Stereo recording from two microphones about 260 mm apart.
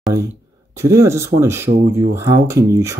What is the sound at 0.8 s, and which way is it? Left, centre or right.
Speech, centre.